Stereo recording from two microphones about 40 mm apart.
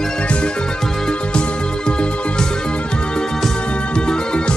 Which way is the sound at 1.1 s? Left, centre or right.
Left.